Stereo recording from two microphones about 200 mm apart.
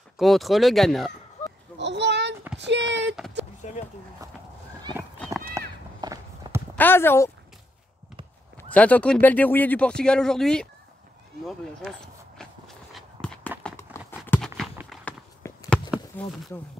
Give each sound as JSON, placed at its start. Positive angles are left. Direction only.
{"t": 0.2, "sound": "speech", "side_deg": 0}
{"t": 1.8, "sound": "a sound", "side_deg": -60}
{"t": 3.6, "sound": "speech", "side_deg": 35}
{"t": 5.2, "sound": "clip-clop", "side_deg": 5}
{"t": 5.6, "sound": "run", "side_deg": -15}
{"t": 5.9, "sound": "walk", "side_deg": -20}
{"t": 6.7, "sound": "speech", "side_deg": 10}
{"t": 8.5, "sound": "speech", "side_deg": 5}
{"t": 12.4, "sound": "walk", "side_deg": 0}
{"t": 14.9, "sound": "a sound", "side_deg": 5}
{"t": 16.2, "sound": "speech", "side_deg": 0}